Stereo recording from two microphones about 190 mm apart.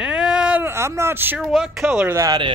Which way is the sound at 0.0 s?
5° right (ahead or behind).